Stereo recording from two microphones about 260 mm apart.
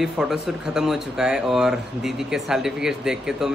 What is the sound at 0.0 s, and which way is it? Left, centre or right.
Speech, centre.